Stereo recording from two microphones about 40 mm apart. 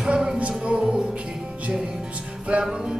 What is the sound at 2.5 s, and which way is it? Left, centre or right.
Music, right.